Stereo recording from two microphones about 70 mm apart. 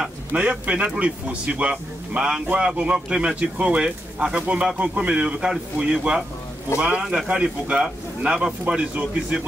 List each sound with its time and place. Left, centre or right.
0.3 s a man's voice: centre